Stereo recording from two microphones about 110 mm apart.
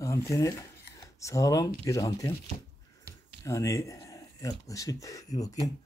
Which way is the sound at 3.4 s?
30° left (ahead or behind).